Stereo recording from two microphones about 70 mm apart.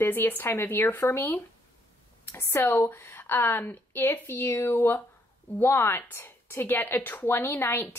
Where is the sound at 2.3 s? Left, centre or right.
Left.